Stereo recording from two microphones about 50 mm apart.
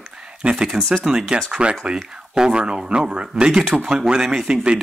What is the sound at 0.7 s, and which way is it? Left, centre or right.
Speech, centre.